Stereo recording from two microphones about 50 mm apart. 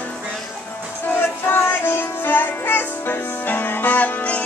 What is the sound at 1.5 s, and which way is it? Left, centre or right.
Music, left.